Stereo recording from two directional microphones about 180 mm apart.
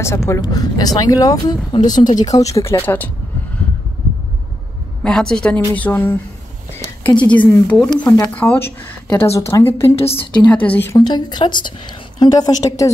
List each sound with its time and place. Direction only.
0.0 s speech: 15° left (ahead or behind)
5.0 s a woman's voice: 5° left (ahead or behind)
9.8 s a woman's voice: 35° left (ahead or behind)
10.3 s a woman's voice: 5° left (ahead or behind)
11.1 s speech: 25° left (ahead or behind)